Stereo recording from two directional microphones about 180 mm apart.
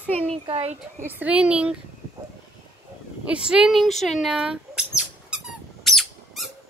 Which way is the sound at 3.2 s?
5° right (ahead or behind).